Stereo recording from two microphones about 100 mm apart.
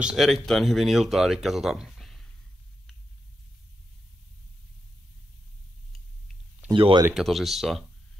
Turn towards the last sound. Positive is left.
turn(degrees=0)  # may be behind; listen again after turning